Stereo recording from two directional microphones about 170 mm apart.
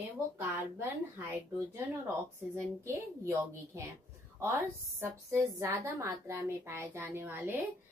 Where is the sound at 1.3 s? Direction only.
15° right (ahead or behind).